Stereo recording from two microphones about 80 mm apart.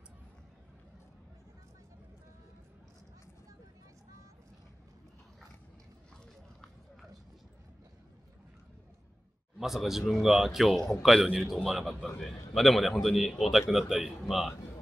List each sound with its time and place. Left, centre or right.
9.6 s a man's voice: centre